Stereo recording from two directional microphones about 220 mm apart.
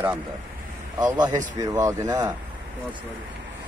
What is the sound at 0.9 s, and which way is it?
Speech, 20° right (ahead or behind).